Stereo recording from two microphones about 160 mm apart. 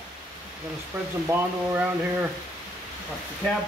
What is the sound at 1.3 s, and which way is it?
Speech, 15° right (ahead or behind).